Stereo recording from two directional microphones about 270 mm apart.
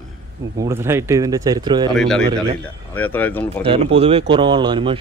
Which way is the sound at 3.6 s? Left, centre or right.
Right.